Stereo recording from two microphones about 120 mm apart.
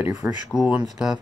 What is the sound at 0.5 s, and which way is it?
Speech, 5° right (ahead or behind).